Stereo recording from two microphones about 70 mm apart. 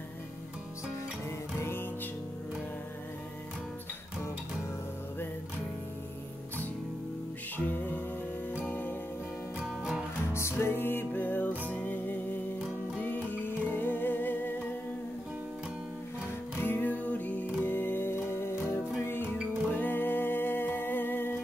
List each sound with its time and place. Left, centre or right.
1.6 s music: left
7.5 s music: left
10.3 s music: left
16.5 s music: left